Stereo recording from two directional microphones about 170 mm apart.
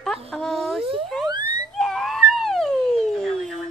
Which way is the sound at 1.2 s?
25° right (ahead or behind).